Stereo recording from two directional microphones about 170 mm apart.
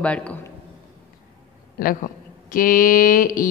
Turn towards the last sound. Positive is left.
turn(degrees=55)  # may be behind; listen again after turning